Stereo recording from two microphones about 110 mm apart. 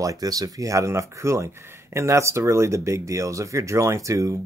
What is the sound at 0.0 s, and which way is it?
Speech, 30° right (ahead or behind).